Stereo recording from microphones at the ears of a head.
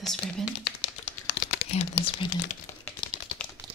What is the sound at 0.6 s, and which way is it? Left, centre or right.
Typing, left.